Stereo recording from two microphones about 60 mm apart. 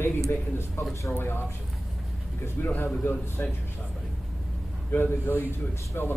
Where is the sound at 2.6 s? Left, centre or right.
Left.